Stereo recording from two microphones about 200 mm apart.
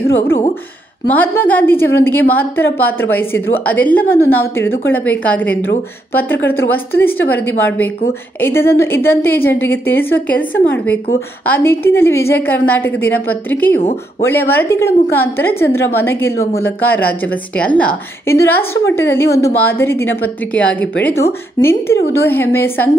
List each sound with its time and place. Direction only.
1.0 s a woman's voice: 10° left (ahead or behind)